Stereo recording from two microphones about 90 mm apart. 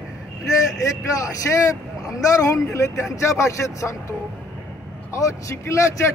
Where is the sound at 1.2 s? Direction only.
40° left (ahead or behind).